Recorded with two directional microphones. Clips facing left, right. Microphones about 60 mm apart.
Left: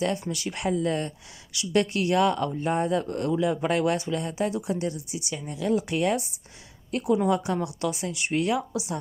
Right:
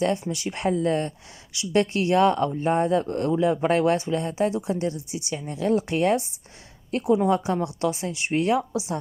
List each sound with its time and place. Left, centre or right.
0.3 s speech: right